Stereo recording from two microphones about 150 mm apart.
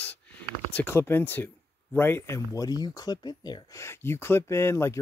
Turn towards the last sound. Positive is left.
turn(degrees=15)  # may be behind; listen again after turning